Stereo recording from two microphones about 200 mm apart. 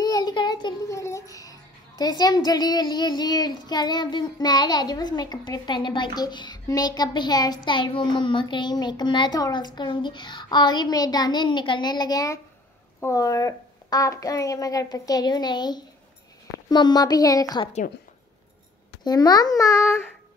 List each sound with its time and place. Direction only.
0.0 s child singing: 20° left (ahead or behind)
9.8 s a child's voice: 20° left (ahead or behind)
19.0 s a child's voice: 20° left (ahead or behind)